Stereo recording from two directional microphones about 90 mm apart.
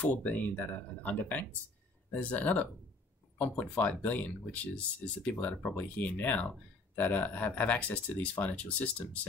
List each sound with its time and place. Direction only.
0.0 s speech: 15° left (ahead or behind)